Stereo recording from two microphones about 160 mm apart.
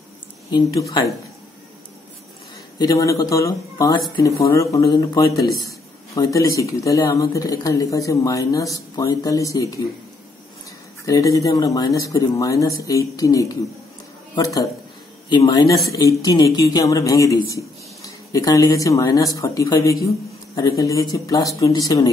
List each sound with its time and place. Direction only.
0.5 s a man's voice: 25° left (ahead or behind)
2.8 s a man's voice: 20° left (ahead or behind)
11.1 s a man's voice: 20° left (ahead or behind)